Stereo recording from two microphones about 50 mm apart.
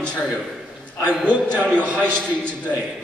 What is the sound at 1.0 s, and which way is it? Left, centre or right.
A man's voice, right.